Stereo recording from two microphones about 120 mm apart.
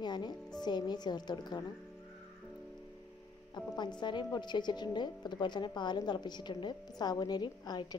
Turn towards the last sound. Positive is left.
turn(degrees=35)  # may be behind; listen again after turning